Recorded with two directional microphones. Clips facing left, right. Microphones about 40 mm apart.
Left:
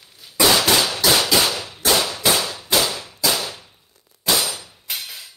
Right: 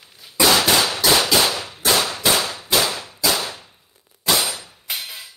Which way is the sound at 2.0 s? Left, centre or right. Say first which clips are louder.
Even; right.